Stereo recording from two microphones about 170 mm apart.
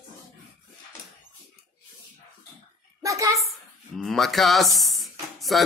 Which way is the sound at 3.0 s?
20° right (ahead or behind).